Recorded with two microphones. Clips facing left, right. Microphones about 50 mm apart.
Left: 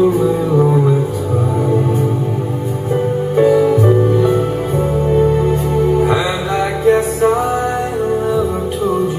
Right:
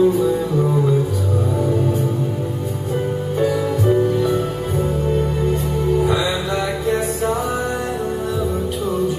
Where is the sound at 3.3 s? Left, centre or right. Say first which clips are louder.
Left 9 dB; left.